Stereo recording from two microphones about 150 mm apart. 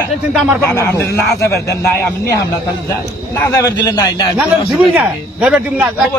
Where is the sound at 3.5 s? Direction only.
20° left (ahead or behind).